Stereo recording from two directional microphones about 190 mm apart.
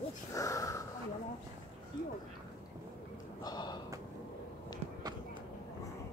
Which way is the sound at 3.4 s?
20° left (ahead or behind).